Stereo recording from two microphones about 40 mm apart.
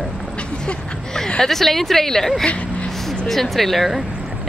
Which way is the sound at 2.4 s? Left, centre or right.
Left.